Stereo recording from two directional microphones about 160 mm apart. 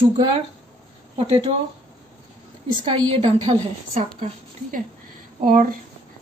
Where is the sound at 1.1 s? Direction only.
40° right (ahead or behind).